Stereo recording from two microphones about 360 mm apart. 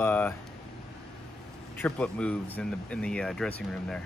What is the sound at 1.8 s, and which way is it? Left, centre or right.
Speech, centre.